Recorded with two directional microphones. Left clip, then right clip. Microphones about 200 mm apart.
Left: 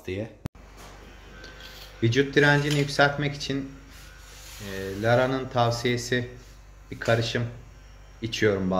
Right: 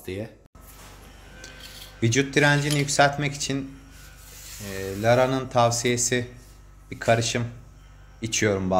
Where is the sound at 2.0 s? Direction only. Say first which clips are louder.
Even; 40° right (ahead or behind).